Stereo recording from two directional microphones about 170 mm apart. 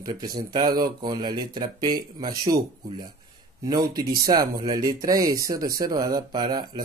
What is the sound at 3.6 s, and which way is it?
Speech, 20° right (ahead or behind).